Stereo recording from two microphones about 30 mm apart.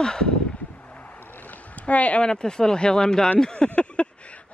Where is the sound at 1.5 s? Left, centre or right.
Left.